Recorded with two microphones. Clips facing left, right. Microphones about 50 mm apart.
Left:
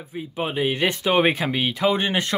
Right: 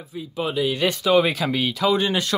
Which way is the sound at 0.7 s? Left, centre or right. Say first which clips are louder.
Right 2 dB; left.